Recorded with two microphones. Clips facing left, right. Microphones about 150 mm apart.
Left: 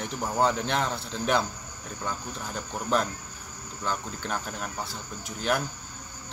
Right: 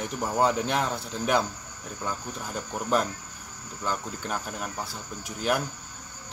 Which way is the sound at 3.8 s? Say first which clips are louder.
Right 1 dB; 5° right (ahead or behind).